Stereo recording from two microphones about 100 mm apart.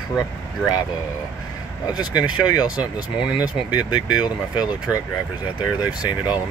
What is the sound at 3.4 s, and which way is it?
Speech, 45° left (ahead or behind).